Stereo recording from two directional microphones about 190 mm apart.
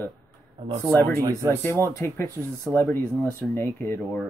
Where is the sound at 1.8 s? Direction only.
15° left (ahead or behind).